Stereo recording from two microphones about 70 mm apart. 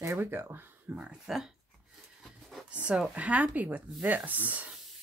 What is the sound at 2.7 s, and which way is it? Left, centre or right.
Speech, centre.